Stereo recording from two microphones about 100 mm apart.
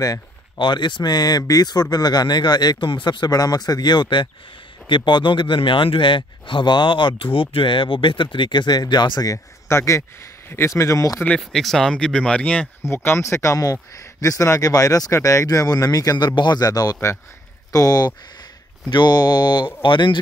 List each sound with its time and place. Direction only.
0.6 s speech: 50° left (ahead or behind); by 11.1 s 30° left (ahead or behind)
11.3 s speech: 5° left (ahead or behind)
12.8 s speech: 25° left (ahead or behind); by 20.2 s 55° left (ahead or behind)